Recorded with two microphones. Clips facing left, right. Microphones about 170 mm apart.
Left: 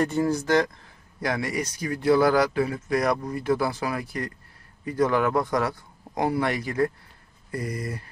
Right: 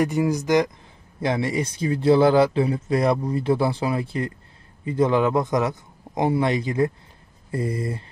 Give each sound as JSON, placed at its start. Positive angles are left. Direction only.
{"t": 0.0, "sound": "a man's voice", "side_deg": -15}